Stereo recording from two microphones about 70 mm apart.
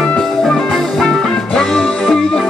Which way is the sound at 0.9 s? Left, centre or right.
Centre.